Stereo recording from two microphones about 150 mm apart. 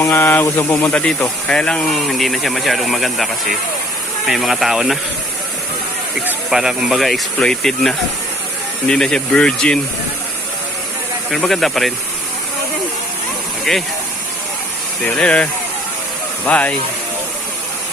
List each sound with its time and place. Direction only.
0.0 s speech: 15° left (ahead or behind); by 4.9 s centre (ahead or behind)
6.2 s speech: 5° right (ahead or behind)
11.2 s speech: centre (ahead or behind)
13.7 s speech: centre (ahead or behind)
15.0 s speech: 10° left (ahead or behind)
16.4 s speech: 10° left (ahead or behind)